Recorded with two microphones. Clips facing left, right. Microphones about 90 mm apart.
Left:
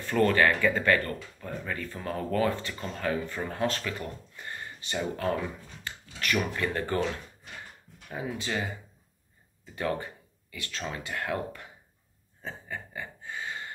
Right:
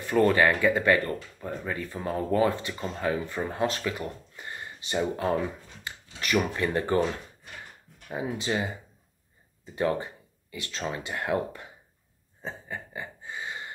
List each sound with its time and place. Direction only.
0.0 s speech: 15° right (ahead or behind)
8.1 s speech: 20° right (ahead or behind)
9.8 s speech: 25° right (ahead or behind)
12.4 s a sound: 20° right (ahead or behind)